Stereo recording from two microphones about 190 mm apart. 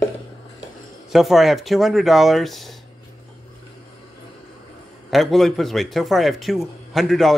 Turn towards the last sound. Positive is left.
turn(degrees=0)  # may be behind; listen again after turning